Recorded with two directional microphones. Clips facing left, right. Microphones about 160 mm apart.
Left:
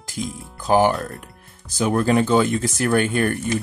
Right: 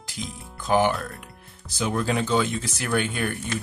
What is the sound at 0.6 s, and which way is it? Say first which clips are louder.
Speech: left 4 dB; 40° left (ahead or behind).